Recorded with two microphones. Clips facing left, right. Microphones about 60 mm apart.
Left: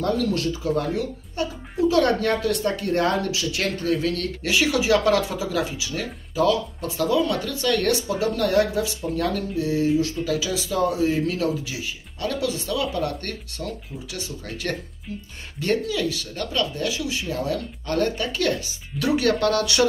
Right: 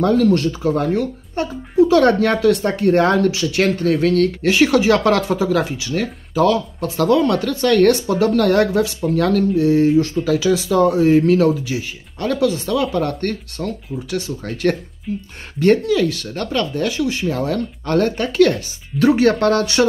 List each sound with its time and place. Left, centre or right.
0.0 s speech: right